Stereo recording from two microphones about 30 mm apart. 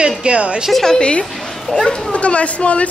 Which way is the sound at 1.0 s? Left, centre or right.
Left.